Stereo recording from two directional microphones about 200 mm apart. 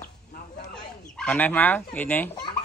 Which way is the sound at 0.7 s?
5° left (ahead or behind).